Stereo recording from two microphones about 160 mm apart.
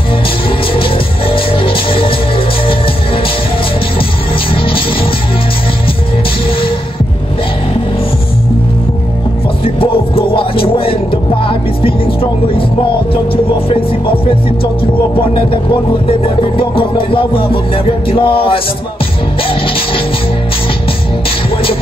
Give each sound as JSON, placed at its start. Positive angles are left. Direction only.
{"t": 0.7, "sound": "music", "side_deg": 35}
{"t": 9.8, "sound": "music", "side_deg": 35}
{"t": 15.1, "sound": "music", "side_deg": 35}